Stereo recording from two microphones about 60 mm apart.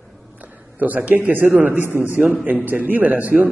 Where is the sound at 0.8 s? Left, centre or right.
Right.